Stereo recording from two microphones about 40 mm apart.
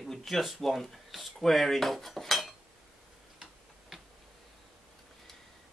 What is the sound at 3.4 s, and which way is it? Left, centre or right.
Tick-tock, centre.